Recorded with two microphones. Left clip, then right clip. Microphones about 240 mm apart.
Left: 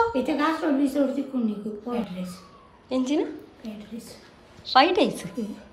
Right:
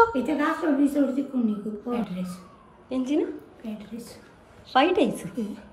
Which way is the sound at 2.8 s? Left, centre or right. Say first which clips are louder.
Left 1 dB; centre.